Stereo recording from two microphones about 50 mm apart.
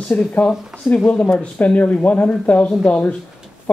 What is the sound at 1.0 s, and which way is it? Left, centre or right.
Speech, left.